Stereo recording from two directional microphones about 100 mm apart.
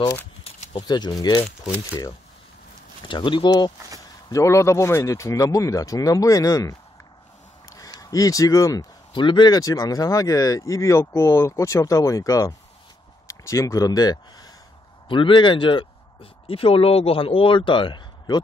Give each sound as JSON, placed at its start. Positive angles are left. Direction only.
{"t": 0.8, "sound": "speech", "side_deg": 45}
{"t": 3.1, "sound": "speech", "side_deg": 55}
{"t": 4.3, "sound": "speech", "side_deg": 30}
{"t": 9.1, "sound": "speech", "side_deg": 55}
{"t": 9.6, "sound": "speech", "side_deg": 40}
{"t": 15.0, "sound": "speech", "side_deg": 55}